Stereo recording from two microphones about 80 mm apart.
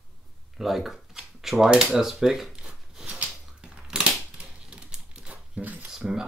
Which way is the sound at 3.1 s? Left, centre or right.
Centre.